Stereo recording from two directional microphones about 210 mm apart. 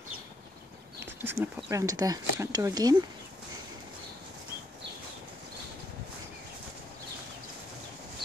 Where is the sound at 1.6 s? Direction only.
15° right (ahead or behind).